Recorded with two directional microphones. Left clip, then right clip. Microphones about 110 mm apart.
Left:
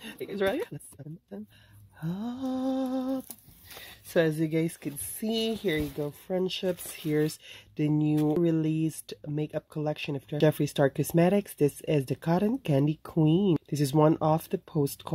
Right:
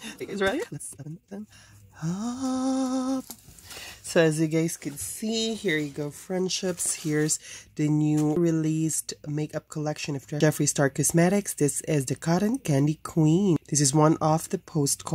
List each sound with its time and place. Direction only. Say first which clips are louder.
2.0 s a sound: right 4 dB; 25° right (ahead or behind)
3.8 s a sound: right 4 dB; 45° right (ahead or behind)
5.2 s speech: right 1 dB; 40° left (ahead or behind)
5.5 s speech: right 2 dB; 15° left (ahead or behind)
5.9 s speech: even; centre (ahead or behind)
6.4 s speech: right 5 dB; 10° right (ahead or behind)